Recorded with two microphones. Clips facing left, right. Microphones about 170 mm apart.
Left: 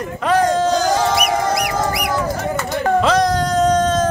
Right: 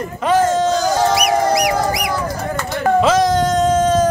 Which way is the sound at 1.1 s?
50° left (ahead or behind).